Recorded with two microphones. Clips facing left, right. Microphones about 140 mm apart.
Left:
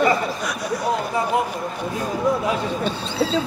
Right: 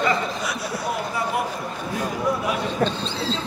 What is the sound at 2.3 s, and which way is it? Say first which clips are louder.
Speech: left 4 dB; 25° left (ahead or behind).